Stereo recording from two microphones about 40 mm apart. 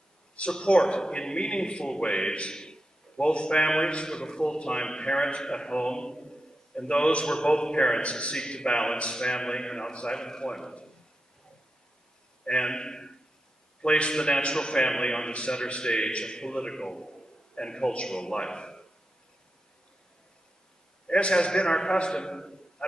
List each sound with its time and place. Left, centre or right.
0.4 s a man's voice: left
12.4 s a man's voice: left
21.1 s a man's voice: left